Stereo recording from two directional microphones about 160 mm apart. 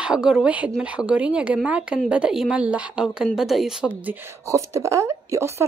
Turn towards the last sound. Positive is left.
turn(degrees=-20)  # may be behind; listen again after turning